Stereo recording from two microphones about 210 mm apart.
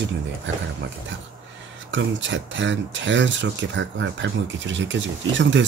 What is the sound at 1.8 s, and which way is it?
Speech, 60° right (ahead or behind).